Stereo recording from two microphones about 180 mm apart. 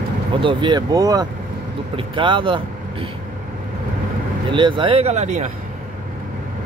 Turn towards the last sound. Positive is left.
turn(degrees=-40)  # may be behind; listen again after turning